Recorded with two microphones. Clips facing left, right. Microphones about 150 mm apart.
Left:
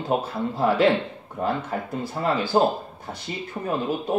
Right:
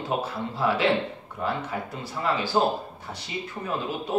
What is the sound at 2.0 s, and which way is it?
Speech, 50° left (ahead or behind).